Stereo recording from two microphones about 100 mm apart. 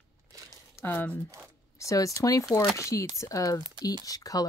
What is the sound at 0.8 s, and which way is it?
Speech, 20° left (ahead or behind).